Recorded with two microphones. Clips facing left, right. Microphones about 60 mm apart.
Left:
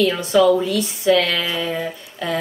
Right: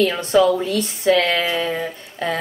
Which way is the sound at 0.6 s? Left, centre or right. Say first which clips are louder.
Left 1 dB; right.